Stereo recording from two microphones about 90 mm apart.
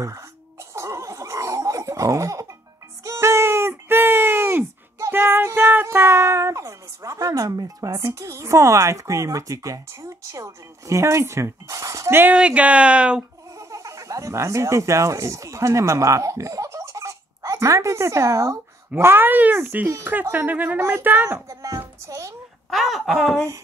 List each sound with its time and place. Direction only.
0.7 s a sound: 35° right (ahead or behind)
12.2 s speech: 15° right (ahead or behind)
13.6 s speech: 35° right (ahead or behind)
18.9 s speech: 25° right (ahead or behind)
21.5 s a sound: 35° right (ahead or behind)
22.7 s speech: centre (ahead or behind)